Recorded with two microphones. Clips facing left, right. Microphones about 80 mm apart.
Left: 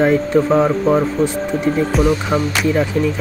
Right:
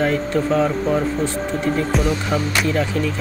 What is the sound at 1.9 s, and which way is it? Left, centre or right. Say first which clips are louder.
Speech: left 6 dB; centre.